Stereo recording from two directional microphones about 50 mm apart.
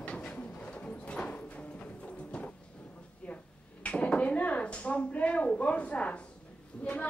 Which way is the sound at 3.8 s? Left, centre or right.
Left.